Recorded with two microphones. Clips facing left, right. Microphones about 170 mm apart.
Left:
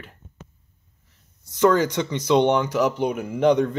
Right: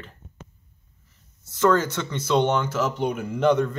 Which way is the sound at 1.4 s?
15° left (ahead or behind).